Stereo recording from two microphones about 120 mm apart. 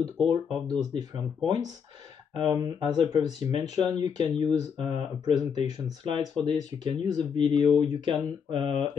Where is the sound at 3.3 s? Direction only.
65° left (ahead or behind).